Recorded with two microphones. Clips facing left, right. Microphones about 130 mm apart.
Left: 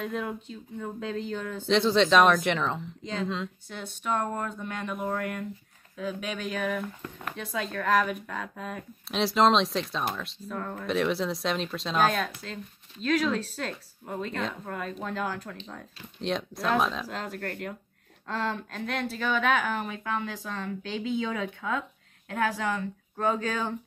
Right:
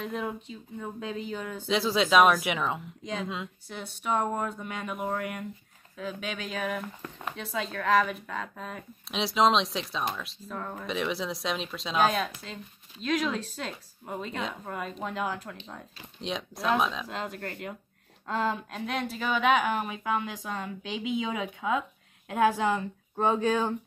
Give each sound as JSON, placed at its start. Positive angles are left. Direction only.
{"t": 0.0, "sound": "speech", "side_deg": 0}
{"t": 16.2, "sound": "speech", "side_deg": 0}